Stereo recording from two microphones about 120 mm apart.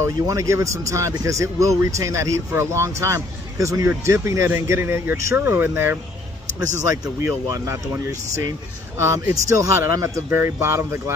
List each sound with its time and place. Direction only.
0.0 s speech: 25° right (ahead or behind)